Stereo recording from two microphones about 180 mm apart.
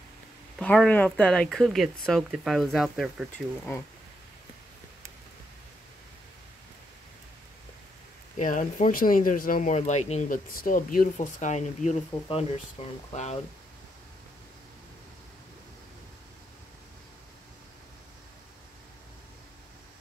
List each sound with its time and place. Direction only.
0.6 s speech: 5° left (ahead or behind)
8.4 s speech: 45° left (ahead or behind)
12.1 s speech: 30° left (ahead or behind)